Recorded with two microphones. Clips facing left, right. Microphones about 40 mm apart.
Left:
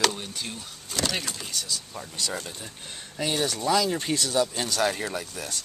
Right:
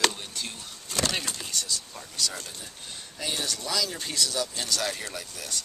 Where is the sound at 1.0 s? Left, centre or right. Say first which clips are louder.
Left 1 dB; centre.